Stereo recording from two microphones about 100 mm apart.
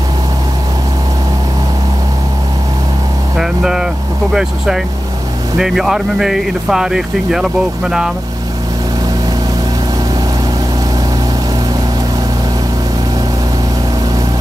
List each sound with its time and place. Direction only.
3.3 s vehicle: 5° right (ahead or behind)
4.3 s speech: 5° right (ahead or behind)